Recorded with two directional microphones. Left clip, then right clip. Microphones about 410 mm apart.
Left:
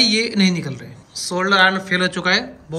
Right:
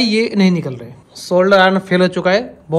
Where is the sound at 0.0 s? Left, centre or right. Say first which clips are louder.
Right 1 dB; centre.